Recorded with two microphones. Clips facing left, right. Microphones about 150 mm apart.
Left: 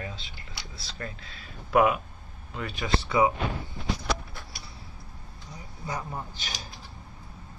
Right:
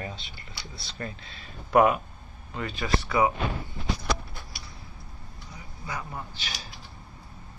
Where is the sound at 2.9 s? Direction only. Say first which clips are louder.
Left 1 dB; 25° left (ahead or behind).